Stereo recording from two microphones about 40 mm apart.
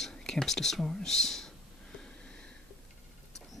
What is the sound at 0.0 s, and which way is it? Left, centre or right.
Speech, centre.